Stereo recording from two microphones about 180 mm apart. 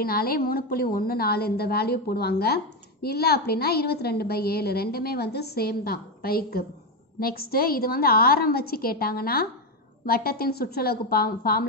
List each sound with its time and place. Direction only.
0.0 s a woman's voice: 55° left (ahead or behind)